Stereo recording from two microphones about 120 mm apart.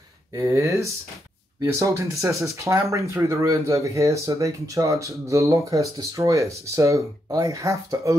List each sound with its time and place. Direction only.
0.3 s speech: 25° right (ahead or behind)